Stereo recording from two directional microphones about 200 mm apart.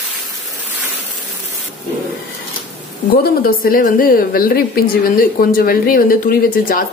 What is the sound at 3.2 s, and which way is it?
A woman's voice, 45° left (ahead or behind).